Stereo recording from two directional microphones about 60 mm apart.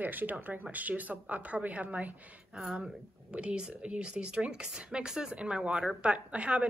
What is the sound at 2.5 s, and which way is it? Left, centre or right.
Speech, centre.